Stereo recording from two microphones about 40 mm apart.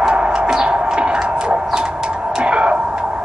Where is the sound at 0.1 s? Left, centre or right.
Right.